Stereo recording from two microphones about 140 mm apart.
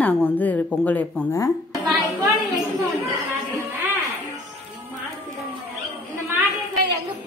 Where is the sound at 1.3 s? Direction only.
25° left (ahead or behind).